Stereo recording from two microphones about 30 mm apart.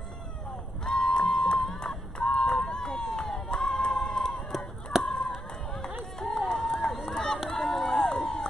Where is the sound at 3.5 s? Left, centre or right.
Left.